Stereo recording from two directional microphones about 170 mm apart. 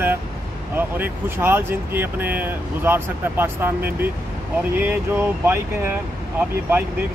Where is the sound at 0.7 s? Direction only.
10° right (ahead or behind).